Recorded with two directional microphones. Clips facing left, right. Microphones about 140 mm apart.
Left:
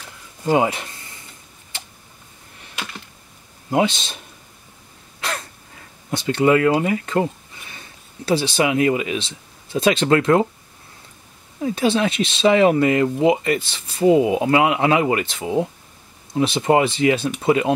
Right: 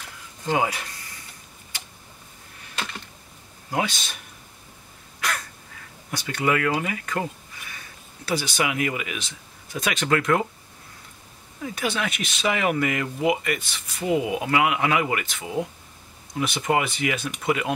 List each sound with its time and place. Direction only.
0.5 s speech: 25° left (ahead or behind)
2.7 s computer keyboard: 10° left (ahead or behind)
3.7 s speech: 25° left (ahead or behind)
5.2 s throat clearing: 25° left (ahead or behind)
6.0 s speech: 25° left (ahead or behind)
11.6 s speech: 30° left (ahead or behind)